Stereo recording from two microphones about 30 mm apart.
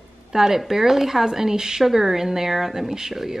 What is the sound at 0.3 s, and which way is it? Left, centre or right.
A woman's voice, centre.